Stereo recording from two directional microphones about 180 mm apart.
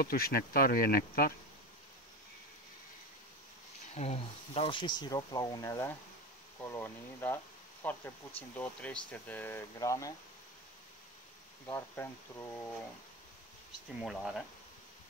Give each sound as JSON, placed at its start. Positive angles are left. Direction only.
{"t": 0.0, "sound": "speech", "side_deg": 55}
{"t": 3.9, "sound": "speech", "side_deg": 35}
{"t": 11.6, "sound": "speech", "side_deg": 15}
{"t": 14.0, "sound": "speech", "side_deg": 0}